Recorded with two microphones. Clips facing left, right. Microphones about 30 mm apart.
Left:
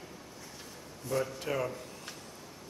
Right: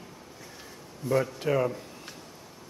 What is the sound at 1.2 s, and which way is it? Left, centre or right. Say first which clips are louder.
Speech: right 6 dB; centre.